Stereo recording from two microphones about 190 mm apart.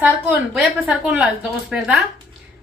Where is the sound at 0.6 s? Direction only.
Centre (ahead or behind).